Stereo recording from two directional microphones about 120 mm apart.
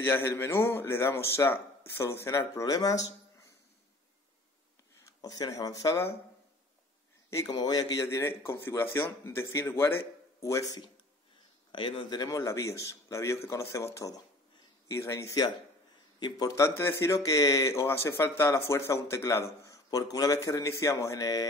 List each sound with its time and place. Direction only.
0.0 s speech: 20° left (ahead or behind)
5.0 s speech: 30° left (ahead or behind)
7.4 s speech: 35° left (ahead or behind)
8.2 s speech: 20° left (ahead or behind)
11.7 s speech: 45° left (ahead or behind)